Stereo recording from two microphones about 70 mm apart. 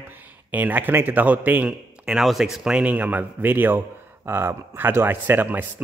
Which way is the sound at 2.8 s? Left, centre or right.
Right.